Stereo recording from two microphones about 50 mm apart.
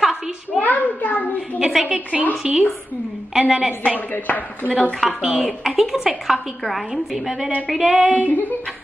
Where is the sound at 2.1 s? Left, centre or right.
Centre.